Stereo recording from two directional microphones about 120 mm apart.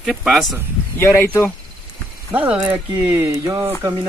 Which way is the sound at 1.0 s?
20° left (ahead or behind).